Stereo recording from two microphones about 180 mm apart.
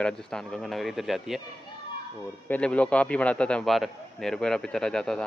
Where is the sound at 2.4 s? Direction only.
10° left (ahead or behind).